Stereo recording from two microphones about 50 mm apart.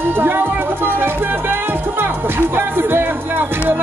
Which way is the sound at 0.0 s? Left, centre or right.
Right.